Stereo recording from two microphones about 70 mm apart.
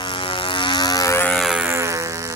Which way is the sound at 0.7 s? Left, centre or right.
Left.